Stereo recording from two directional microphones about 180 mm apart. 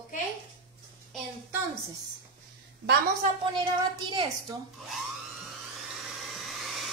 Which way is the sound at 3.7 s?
25° right (ahead or behind).